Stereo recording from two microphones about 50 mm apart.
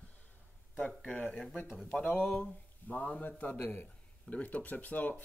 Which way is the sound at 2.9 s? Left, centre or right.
Left.